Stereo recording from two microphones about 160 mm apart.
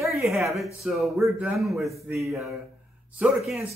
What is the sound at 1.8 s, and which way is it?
Speech, 20° right (ahead or behind).